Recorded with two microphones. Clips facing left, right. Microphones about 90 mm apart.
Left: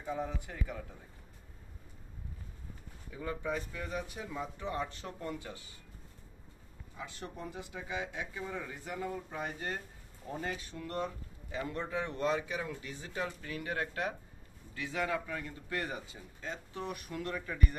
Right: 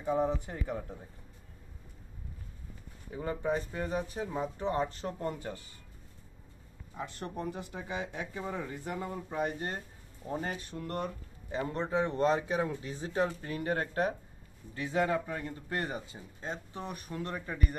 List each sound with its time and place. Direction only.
0.4 s speech: 40° right (ahead or behind)
3.1 s speech: 35° right (ahead or behind)
7.0 s speech: 50° right (ahead or behind)
10.3 s speech: 35° right (ahead or behind)
10.6 s speech: 50° right (ahead or behind)
11.5 s speech: 35° right (ahead or behind)